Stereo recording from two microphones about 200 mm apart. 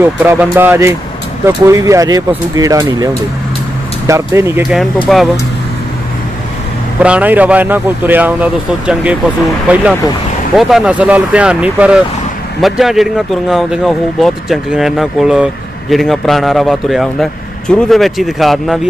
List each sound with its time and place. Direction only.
0.0 s a man's voice: 10° right (ahead or behind)
4.1 s a man's voice: 15° right (ahead or behind)
5.0 s speech: centre (ahead or behind)
7.0 s a man's voice: 5° right (ahead or behind)